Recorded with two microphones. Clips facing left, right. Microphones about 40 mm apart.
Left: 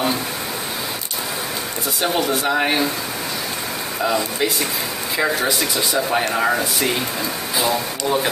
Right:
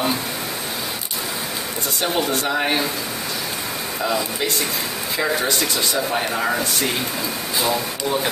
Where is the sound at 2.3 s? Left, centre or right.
Centre.